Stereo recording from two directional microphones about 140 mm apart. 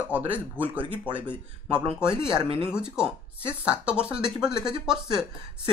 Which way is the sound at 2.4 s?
40° right (ahead or behind).